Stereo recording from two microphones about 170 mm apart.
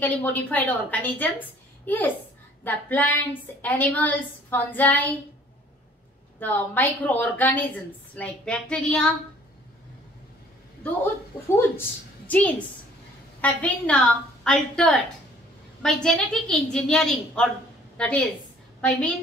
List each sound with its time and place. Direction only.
0.0 s a woman's voice: 10° left (ahead or behind)
6.4 s a woman's voice: 10° left (ahead or behind)
11.4 s a woman's voice: 15° left (ahead or behind)